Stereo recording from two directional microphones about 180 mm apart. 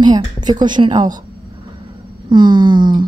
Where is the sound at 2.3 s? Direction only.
25° right (ahead or behind).